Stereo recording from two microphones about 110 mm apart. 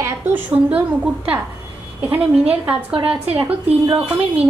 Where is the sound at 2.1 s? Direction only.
15° right (ahead or behind).